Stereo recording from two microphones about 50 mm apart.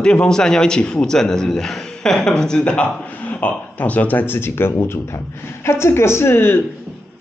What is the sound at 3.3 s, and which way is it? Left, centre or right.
Speech, left.